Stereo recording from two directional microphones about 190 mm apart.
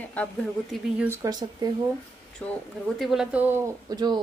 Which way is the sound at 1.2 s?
20° right (ahead or behind).